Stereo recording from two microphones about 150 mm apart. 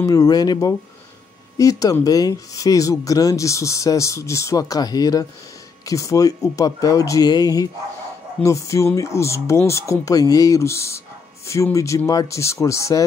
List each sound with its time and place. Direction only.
0.0 s speech: 25° left (ahead or behind)